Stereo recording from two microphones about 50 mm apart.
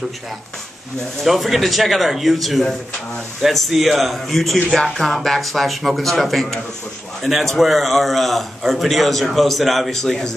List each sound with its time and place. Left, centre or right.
1.2 s a man's voice: centre